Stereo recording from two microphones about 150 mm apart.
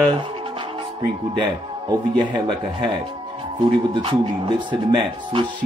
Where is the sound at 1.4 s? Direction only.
30° right (ahead or behind).